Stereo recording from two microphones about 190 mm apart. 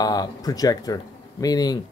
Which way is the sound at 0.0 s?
20° left (ahead or behind).